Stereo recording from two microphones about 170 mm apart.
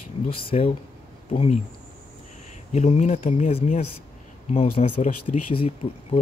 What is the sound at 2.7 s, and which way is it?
Speech, 45° left (ahead or behind).